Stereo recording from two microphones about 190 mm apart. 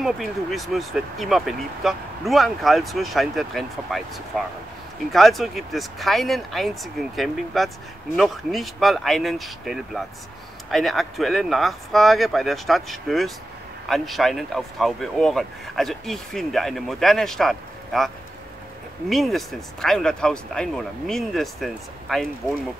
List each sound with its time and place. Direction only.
0.0 s speech: centre (ahead or behind)
5.1 s speech: centre (ahead or behind)